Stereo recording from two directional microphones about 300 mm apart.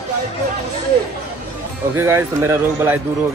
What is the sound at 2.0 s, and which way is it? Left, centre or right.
Speech, centre.